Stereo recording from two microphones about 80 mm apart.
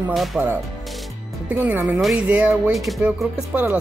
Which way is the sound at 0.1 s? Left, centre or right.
Centre.